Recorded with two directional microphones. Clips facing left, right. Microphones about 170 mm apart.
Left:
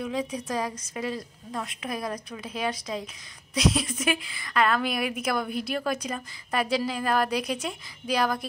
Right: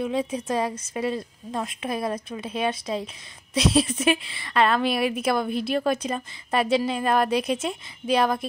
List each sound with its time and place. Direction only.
0.0 s a woman's voice: 25° right (ahead or behind)